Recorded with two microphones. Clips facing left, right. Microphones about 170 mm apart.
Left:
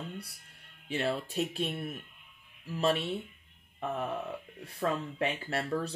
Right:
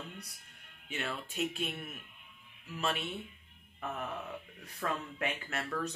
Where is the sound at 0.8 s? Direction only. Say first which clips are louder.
Left 8 dB; 35° left (ahead or behind).